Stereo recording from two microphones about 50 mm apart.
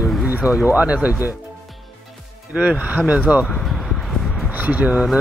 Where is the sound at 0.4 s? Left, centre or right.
Left.